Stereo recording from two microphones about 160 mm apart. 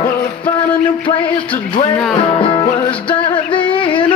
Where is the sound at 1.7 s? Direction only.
30° left (ahead or behind).